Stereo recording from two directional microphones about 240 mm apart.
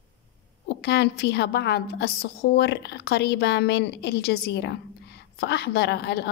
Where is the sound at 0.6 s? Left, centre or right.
Left.